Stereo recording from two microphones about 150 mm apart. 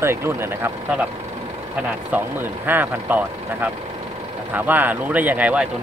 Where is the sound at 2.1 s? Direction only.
15° right (ahead or behind).